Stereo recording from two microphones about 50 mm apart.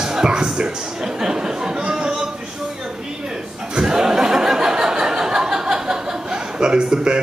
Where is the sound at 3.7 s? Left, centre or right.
Centre.